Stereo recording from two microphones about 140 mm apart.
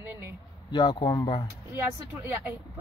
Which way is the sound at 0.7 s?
30° left (ahead or behind).